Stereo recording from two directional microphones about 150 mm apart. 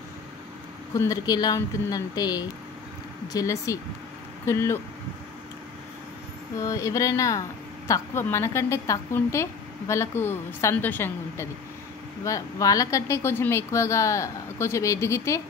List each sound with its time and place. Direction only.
0.9 s a woman's voice: 20° left (ahead or behind)
6.6 s a woman's voice: 20° left (ahead or behind)